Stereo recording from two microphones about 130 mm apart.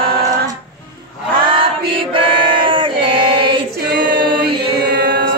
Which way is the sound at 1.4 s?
40° right (ahead or behind).